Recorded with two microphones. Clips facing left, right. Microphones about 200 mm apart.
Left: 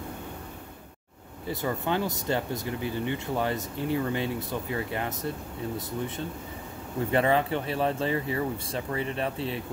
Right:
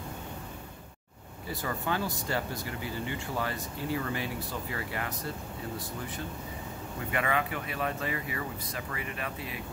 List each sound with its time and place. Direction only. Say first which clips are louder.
1.5 s speech: left 4 dB; 20° left (ahead or behind)